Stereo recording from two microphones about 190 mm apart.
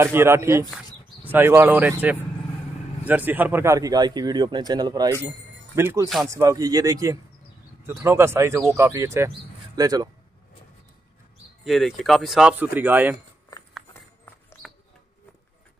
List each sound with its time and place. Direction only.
0.0 s speech: 15° right (ahead or behind)
6.0 s speech: centre (ahead or behind)
6.3 s speech: 15° right (ahead or behind)
11.6 s speech: centre (ahead or behind)
13.5 s a sound: 20° left (ahead or behind)